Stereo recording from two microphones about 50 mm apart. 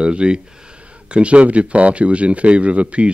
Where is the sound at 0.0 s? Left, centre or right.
Right.